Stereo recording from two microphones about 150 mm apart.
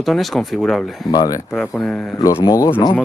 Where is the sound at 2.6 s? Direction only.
35° left (ahead or behind).